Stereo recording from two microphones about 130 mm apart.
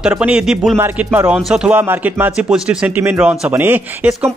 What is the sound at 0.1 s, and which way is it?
Speech, 10° right (ahead or behind).